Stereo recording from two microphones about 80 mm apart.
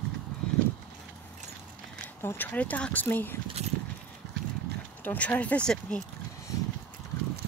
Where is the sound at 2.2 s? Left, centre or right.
Left.